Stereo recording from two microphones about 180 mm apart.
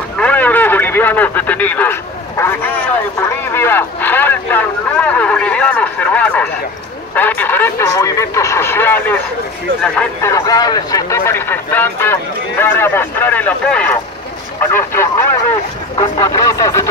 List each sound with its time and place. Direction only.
0.2 s radio: 10° left (ahead or behind)
3.2 s a sound: 15° left (ahead or behind)
7.2 s radio: 10° left (ahead or behind)
9.9 s a man's voice: 15° left (ahead or behind)